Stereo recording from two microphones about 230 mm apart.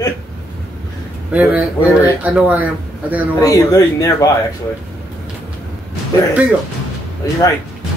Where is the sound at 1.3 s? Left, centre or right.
Centre.